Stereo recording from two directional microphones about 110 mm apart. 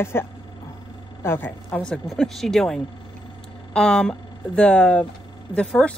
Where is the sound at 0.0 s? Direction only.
20° left (ahead or behind).